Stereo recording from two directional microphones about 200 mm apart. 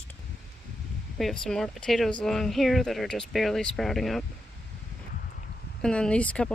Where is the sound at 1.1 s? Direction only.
Centre (ahead or behind).